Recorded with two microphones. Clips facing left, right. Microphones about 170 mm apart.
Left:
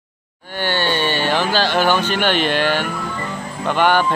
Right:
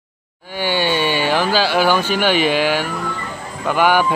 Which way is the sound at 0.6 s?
10° right (ahead or behind).